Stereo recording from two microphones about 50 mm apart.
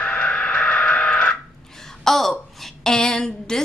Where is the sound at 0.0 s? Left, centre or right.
Left.